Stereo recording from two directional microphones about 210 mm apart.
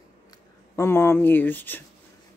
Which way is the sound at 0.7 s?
10° left (ahead or behind).